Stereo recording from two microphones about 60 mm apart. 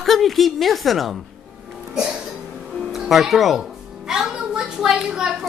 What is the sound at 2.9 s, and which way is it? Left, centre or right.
Speech, centre.